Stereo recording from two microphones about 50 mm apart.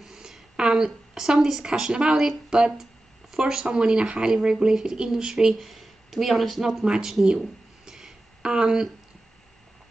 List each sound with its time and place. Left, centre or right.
0.0 s a sound: centre
0.6 s a woman's voice: centre
0.8 s speech: centre
2.8 s a sound: centre
3.7 s speech: centre
5.3 s speech: centre
6.8 s speech: centre
7.2 s a sound: centre
8.4 s speech: centre